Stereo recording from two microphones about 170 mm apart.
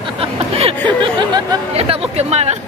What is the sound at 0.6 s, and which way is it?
Speech, 25° right (ahead or behind).